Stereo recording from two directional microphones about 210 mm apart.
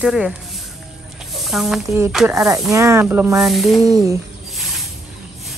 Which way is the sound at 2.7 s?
15° right (ahead or behind).